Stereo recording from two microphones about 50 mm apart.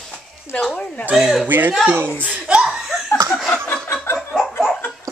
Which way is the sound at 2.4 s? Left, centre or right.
Centre.